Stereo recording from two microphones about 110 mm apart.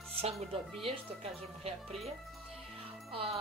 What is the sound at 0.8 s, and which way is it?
Speech, 60° right (ahead or behind).